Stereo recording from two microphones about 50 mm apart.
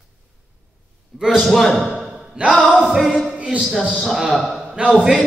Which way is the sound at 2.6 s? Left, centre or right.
Centre.